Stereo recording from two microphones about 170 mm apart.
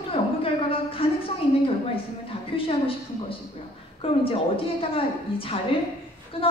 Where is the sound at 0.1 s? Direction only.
35° left (ahead or behind).